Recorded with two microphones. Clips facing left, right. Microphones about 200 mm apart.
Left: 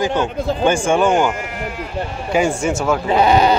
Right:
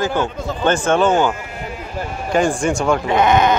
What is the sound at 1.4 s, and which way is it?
Sheep, 80° left.